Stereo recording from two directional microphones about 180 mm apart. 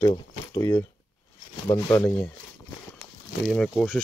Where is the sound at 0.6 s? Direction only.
20° left (ahead or behind).